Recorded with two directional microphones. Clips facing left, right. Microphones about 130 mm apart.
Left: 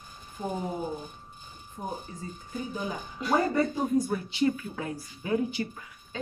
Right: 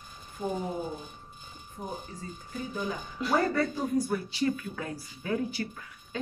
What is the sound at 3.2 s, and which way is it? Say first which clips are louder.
Speech: left 1 dB; centre (ahead or behind).